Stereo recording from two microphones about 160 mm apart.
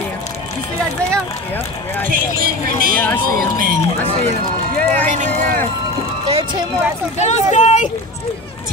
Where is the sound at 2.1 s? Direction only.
65° right (ahead or behind).